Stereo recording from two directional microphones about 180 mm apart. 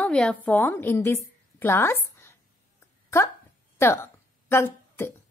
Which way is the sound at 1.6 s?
15° left (ahead or behind).